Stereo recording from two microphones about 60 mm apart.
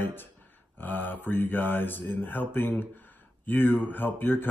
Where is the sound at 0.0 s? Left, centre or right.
Left.